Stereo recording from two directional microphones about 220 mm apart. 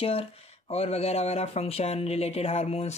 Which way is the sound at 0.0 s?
25° left (ahead or behind).